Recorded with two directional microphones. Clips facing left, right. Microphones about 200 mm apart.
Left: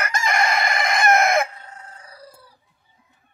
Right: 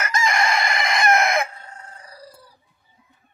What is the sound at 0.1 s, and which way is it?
Chicken, 55° left (ahead or behind).